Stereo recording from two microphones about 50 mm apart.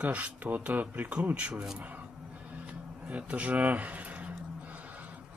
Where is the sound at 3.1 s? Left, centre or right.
Right.